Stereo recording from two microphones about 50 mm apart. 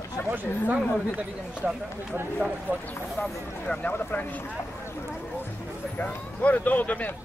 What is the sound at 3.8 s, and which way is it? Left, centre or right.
Speech, left.